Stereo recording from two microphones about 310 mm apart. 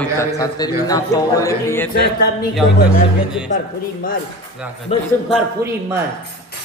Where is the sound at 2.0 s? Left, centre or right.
Left.